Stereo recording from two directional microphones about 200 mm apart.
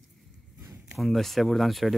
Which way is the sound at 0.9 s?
Centre (ahead or behind).